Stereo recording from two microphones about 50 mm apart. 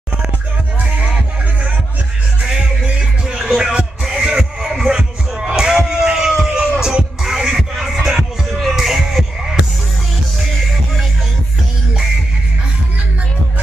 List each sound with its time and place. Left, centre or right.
2.4 s music: centre
3.4 s speech: centre
3.7 s music: centre
5.6 s a sound: centre
6.8 s music: centre